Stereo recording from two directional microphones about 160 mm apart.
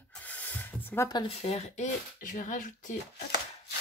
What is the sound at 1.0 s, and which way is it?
Speech, 30° left (ahead or behind).